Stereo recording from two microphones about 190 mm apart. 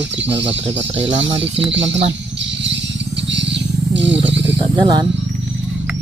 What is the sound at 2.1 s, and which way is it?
Vehicle, 70° right (ahead or behind).